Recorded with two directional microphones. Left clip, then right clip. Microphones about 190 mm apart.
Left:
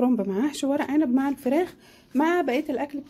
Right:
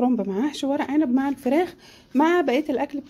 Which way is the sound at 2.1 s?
15° right (ahead or behind).